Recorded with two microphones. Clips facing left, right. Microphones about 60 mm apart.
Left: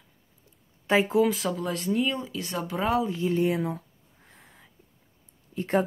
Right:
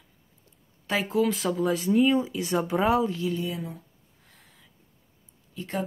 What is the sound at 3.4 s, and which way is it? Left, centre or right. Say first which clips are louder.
Speech: left 7 dB; left.